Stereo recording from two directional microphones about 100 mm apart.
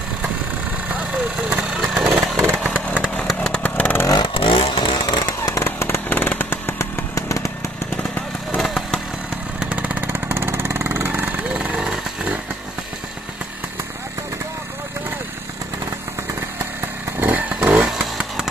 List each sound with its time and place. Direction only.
1.5 s vehicle: 10° right (ahead or behind)
2.4 s chainsaw: 20° right (ahead or behind)
3.3 s chainsaw: 5° left (ahead or behind)
4.1 s vehicle: 50° left (ahead or behind)
5.5 s chainsaw: 25° left (ahead or behind)
8.5 s vehicle: centre (ahead or behind)
9.6 s vehicle: 15° right (ahead or behind)
17.2 s chainsaw: 15° right (ahead or behind)